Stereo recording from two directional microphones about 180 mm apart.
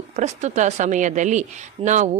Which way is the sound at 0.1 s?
40° right (ahead or behind).